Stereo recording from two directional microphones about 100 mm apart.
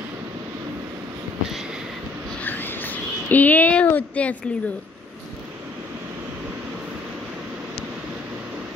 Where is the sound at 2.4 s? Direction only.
20° left (ahead or behind).